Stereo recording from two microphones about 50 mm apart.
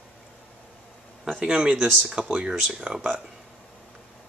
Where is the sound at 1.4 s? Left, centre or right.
Right.